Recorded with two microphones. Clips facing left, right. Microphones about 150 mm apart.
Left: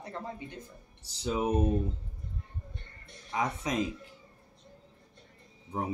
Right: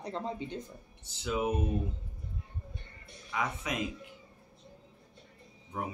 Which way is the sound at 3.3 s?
35° left (ahead or behind).